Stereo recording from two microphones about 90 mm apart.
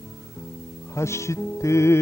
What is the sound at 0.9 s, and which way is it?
Music, 30° left (ahead or behind).